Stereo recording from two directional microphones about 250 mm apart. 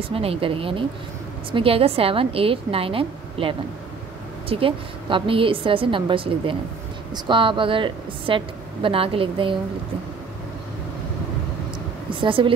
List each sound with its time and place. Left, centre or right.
0.1 s a woman's voice: right
12.2 s a woman's voice: right